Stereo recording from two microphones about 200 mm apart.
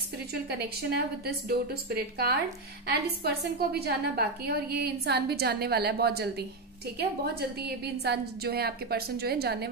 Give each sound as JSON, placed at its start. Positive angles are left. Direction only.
{"t": 0.3, "sound": "a woman's voice", "side_deg": -50}